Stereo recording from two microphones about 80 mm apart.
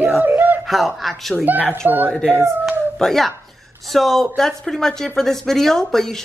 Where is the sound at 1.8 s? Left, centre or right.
Right.